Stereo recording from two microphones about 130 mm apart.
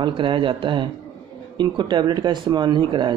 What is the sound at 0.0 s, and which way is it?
Speech, 40° right (ahead or behind).